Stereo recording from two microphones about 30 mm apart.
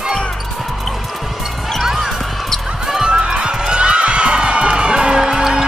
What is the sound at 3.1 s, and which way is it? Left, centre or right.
Music, right.